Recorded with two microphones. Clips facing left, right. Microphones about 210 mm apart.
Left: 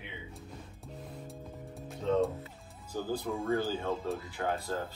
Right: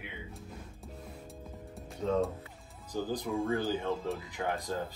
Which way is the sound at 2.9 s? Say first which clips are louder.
Right 1 dB; 15° right (ahead or behind).